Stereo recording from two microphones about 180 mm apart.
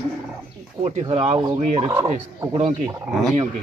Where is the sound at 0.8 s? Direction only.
35° right (ahead or behind).